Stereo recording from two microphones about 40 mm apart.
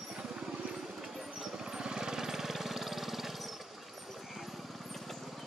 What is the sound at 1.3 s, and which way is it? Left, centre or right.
Vehicle, centre.